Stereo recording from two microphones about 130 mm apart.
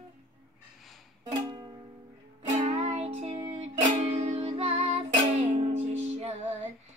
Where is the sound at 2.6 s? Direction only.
60° right (ahead or behind).